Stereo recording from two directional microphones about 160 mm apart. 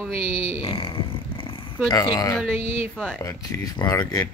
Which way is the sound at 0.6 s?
35° left (ahead or behind).